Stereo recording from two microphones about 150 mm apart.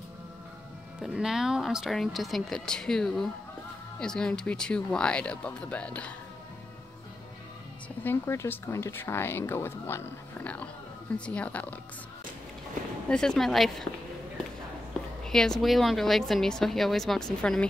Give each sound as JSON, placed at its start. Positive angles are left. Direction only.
{"t": 1.0, "sound": "a woman's voice", "side_deg": -5}
{"t": 8.0, "sound": "speech", "side_deg": 15}
{"t": 13.1, "sound": "a woman's voice", "side_deg": 5}
{"t": 15.2, "sound": "a woman's voice", "side_deg": 5}